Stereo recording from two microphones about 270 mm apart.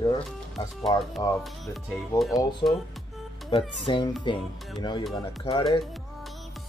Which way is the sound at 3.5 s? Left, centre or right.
Centre.